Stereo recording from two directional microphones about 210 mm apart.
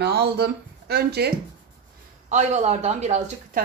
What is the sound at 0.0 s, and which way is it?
Speech, 50° right (ahead or behind).